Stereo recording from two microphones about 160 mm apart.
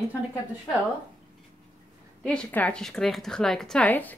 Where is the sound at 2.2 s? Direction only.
5° left (ahead or behind).